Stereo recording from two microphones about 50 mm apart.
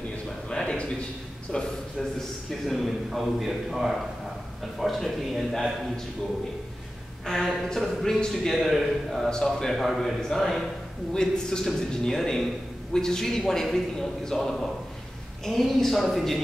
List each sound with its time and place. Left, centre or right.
0.5 s a sound: centre
1.5 s a man's voice: left
2.6 s a man's voice: centre
7.3 s a man's voice: centre